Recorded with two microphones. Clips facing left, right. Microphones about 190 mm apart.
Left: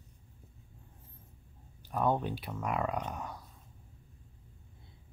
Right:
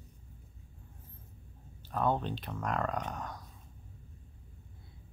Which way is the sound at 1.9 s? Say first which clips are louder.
Left 1 dB; 10° left (ahead or behind).